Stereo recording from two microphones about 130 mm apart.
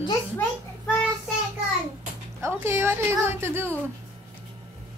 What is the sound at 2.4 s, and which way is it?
Speech, 15° right (ahead or behind).